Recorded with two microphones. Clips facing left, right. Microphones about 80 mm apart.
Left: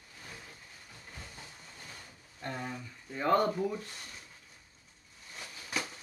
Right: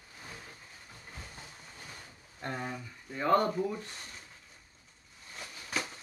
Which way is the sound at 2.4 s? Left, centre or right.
Right.